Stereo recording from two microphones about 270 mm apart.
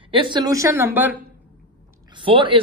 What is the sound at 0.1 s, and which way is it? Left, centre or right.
A woman's voice, centre.